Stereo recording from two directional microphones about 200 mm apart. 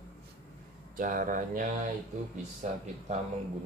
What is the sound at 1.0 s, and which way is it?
Speech, 40° right (ahead or behind).